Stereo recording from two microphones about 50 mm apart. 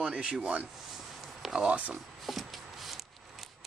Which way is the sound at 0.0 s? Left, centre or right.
Centre.